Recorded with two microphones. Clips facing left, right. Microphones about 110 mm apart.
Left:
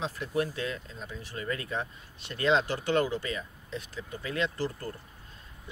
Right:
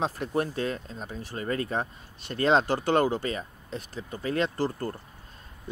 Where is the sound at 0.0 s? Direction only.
45° right (ahead or behind).